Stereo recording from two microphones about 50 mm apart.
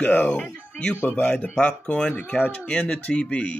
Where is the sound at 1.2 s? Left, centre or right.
Left.